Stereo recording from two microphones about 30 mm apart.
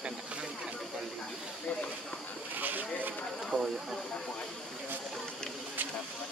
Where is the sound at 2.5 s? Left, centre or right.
Right.